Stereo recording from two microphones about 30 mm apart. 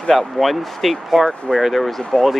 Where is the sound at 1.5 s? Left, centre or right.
Centre.